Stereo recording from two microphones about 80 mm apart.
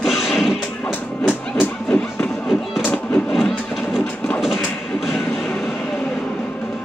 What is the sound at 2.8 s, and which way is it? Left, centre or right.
Artillery fire, left.